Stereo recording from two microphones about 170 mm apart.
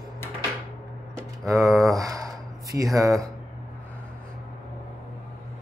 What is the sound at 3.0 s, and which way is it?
Speech, 20° right (ahead or behind).